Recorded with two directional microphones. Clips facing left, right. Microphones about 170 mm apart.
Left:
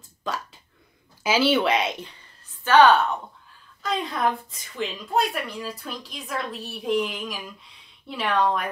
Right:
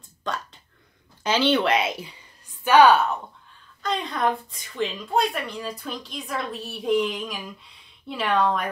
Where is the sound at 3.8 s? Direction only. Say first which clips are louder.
Even; centre (ahead or behind).